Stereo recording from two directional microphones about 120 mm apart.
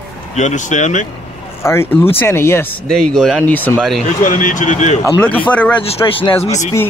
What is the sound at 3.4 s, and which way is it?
Speech, 15° left (ahead or behind).